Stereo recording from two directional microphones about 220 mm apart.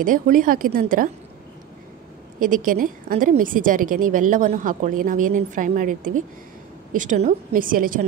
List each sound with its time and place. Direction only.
0.0 s a woman's voice: 40° right (ahead or behind)
2.4 s a woman's voice: 40° right (ahead or behind)